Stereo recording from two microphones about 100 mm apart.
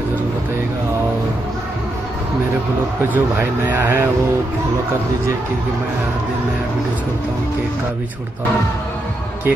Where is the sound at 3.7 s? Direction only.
20° right (ahead or behind).